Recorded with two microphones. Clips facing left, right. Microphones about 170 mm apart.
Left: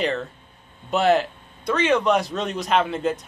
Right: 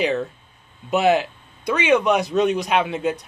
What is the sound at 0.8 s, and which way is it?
A man's voice, 5° right (ahead or behind).